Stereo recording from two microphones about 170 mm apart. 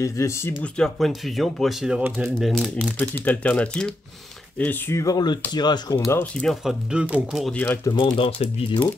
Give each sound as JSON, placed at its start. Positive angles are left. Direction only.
{"t": 0.0, "sound": "speech", "side_deg": 15}
{"t": 6.4, "sound": "speech", "side_deg": 0}
{"t": 7.5, "sound": "speech", "side_deg": 10}
{"t": 8.4, "sound": "speech", "side_deg": 35}